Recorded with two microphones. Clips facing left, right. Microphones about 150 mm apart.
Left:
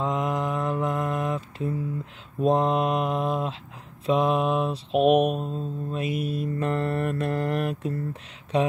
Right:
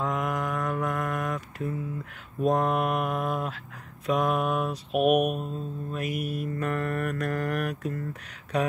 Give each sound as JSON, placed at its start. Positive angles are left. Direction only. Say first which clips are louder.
{"t": 0.0, "sound": "mantra", "louder": "left 3 dB", "side_deg": 25}